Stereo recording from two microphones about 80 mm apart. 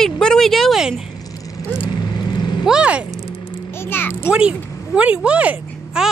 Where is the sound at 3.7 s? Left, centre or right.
Left.